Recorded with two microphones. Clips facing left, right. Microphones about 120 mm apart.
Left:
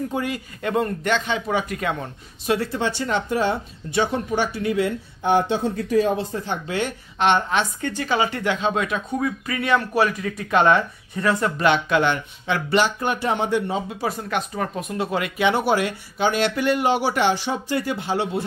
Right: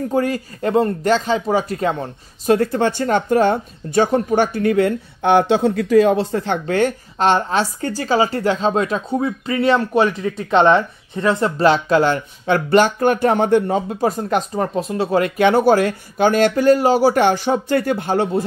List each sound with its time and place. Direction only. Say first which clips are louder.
0.1 s speech: right 7 dB; 40° right (ahead or behind); by 6.8 s 70° right (ahead or behind)
6.8 s a woman's voice: right 3 dB; 35° right (ahead or behind)